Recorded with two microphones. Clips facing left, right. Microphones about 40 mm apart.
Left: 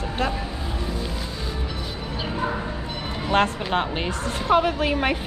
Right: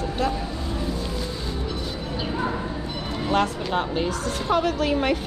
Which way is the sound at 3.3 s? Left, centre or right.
Left.